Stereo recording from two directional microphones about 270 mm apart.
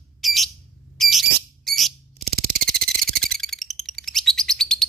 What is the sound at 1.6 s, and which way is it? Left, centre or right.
Owl, centre.